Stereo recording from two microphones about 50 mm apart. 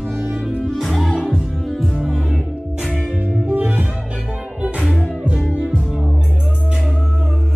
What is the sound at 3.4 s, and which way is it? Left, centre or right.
Music, right.